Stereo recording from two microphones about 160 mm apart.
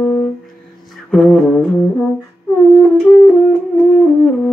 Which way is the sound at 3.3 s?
5° left (ahead or behind).